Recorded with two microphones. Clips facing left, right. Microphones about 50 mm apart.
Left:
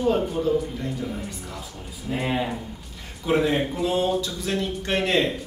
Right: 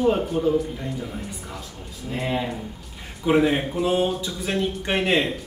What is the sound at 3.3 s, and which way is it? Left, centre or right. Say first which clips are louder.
Speech: right 2 dB; centre.